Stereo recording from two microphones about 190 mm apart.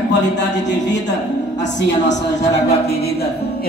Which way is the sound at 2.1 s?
40° left (ahead or behind).